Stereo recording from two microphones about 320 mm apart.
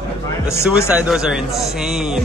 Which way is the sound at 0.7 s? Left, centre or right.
Centre.